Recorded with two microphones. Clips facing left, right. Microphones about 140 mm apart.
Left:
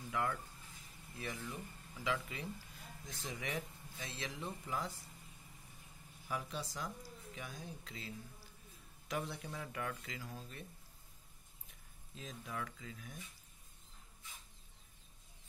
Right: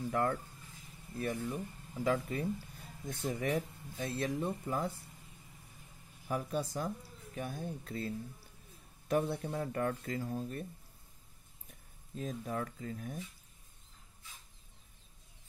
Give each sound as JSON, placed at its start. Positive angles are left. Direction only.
{"t": 0.1, "sound": "speech", "side_deg": -40}
{"t": 6.2, "sound": "speech", "side_deg": -45}
{"t": 12.2, "sound": "speech", "side_deg": -45}